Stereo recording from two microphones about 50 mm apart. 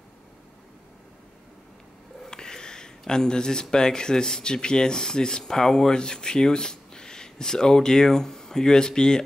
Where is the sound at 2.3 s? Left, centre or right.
Centre.